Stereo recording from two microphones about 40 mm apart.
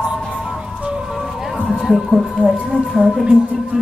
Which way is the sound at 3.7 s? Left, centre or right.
Right.